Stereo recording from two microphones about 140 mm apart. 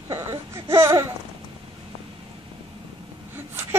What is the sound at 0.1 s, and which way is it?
Speech, 20° right (ahead or behind).